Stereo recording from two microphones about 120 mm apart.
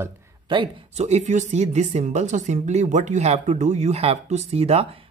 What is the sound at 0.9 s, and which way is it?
Speech, 65° right (ahead or behind).